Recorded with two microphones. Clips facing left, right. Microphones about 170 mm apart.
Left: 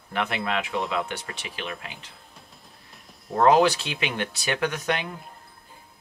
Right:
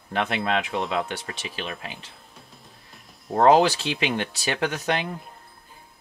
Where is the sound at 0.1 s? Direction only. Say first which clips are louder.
Right 3 dB; 25° right (ahead or behind).